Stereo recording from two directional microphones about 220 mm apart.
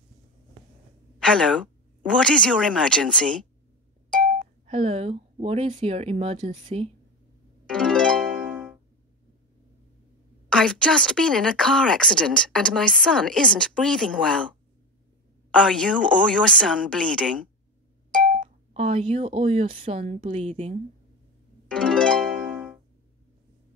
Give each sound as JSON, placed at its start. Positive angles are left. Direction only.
{"t": 1.2, "sound": "speech", "side_deg": 5}
{"t": 4.6, "sound": "speech", "side_deg": -30}
{"t": 7.7, "sound": "music", "side_deg": 5}
{"t": 10.5, "sound": "speech", "side_deg": 5}
{"t": 15.5, "sound": "speech", "side_deg": 5}
{"t": 18.2, "sound": "speech", "side_deg": -30}
{"t": 21.6, "sound": "harp", "side_deg": 5}